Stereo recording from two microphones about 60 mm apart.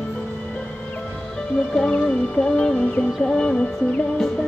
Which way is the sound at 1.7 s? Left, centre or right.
Centre.